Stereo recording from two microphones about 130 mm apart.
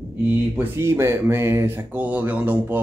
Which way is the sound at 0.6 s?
20° right (ahead or behind).